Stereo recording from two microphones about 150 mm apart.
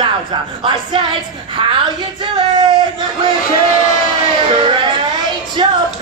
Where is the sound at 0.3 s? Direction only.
35° right (ahead or behind).